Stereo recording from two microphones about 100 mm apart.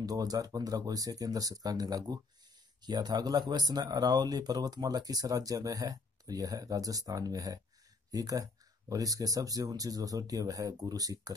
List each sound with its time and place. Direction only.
0.0 s speech: 40° right (ahead or behind)